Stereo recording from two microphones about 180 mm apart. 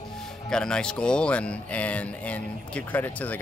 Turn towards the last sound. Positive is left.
turn(degrees=10)  # may be behind; listen again after turning